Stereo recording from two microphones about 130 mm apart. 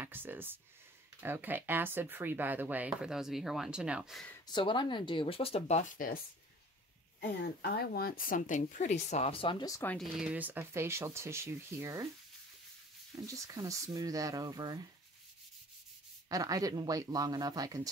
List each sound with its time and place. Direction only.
0.0 s speech: 15° right (ahead or behind)
4.5 s speech: 35° left (ahead or behind); by 6.1 s 85° left
8.2 s speech: 85° left; by 9.7 s 40° left (ahead or behind)
9.9 s speech: 5° right (ahead or behind); by 12.1 s 25° right (ahead or behind)
13.1 s speech: 25° right (ahead or behind)
16.3 s speech: 25° right (ahead or behind)